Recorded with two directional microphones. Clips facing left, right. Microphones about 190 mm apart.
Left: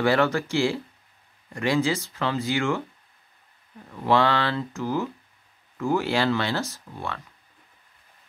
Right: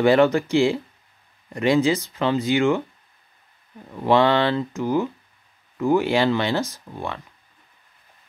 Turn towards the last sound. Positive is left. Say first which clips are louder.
# right 3 dB
turn(degrees=-20)  # may be behind; listen again after turning